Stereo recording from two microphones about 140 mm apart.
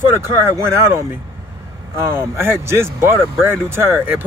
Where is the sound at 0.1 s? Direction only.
20° right (ahead or behind).